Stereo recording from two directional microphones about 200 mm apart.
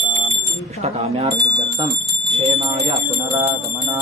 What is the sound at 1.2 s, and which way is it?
Speech, 20° right (ahead or behind).